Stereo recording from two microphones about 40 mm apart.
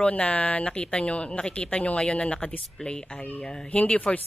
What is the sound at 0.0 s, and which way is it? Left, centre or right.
Speech, left.